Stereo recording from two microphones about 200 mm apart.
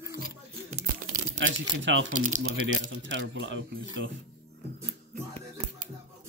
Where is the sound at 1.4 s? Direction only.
65° right (ahead or behind).